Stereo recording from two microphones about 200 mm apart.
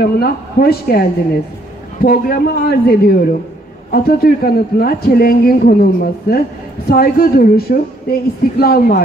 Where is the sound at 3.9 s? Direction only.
50° left (ahead or behind).